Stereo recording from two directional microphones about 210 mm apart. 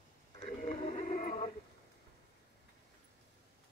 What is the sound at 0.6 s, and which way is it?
Music, 30° left (ahead or behind).